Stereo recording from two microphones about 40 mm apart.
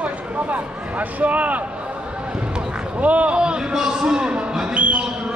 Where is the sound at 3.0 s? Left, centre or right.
Right.